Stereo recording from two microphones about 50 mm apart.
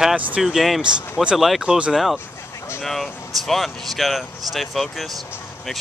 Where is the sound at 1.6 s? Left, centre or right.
Centre.